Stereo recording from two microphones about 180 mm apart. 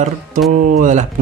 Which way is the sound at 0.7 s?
45° right (ahead or behind).